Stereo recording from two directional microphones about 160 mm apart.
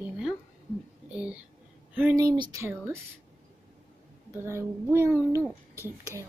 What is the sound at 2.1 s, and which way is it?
Speech, 25° right (ahead or behind).